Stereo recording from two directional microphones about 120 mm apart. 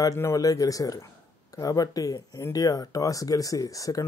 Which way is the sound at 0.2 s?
30° left (ahead or behind).